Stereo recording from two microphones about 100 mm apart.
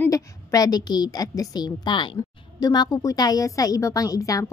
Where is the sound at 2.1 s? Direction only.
40° left (ahead or behind).